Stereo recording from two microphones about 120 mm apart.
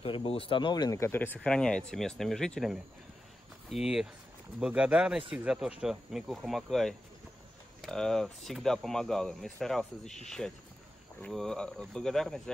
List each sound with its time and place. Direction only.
0.0 s speech: 50° left (ahead or behind)
0.9 s speech: 20° left (ahead or behind)